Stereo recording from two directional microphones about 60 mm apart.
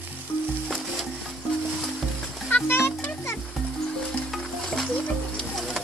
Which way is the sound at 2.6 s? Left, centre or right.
Left.